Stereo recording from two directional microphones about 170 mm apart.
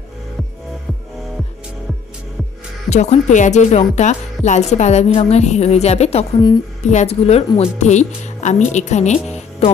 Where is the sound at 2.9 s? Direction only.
40° left (ahead or behind).